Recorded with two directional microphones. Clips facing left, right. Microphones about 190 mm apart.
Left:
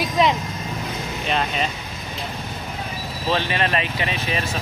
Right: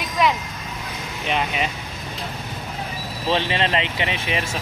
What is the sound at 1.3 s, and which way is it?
Speech, 10° right (ahead or behind).